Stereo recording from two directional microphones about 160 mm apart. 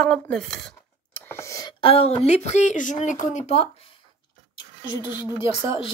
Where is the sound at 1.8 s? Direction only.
40° left (ahead or behind).